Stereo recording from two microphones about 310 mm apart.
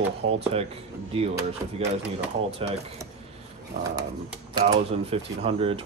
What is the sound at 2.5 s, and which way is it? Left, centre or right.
Speech, centre.